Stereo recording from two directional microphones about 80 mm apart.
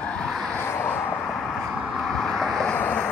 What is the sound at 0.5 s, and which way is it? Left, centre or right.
Vehicle, left.